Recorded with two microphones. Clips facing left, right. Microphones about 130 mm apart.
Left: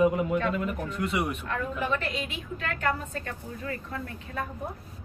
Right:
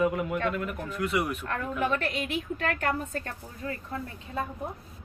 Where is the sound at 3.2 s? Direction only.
30° right (ahead or behind).